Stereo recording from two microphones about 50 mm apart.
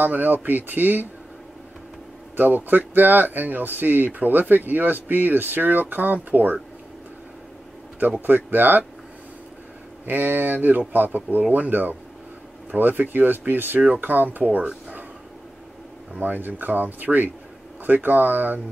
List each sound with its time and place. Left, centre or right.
0.0 s speech: right
2.3 s speech: right
8.3 s speech: right
10.0 s speech: right
16.2 s speech: right